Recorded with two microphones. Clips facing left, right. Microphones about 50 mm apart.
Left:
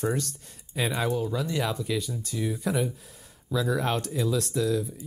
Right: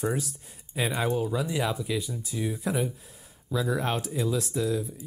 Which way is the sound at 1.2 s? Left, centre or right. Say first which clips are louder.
Even; centre.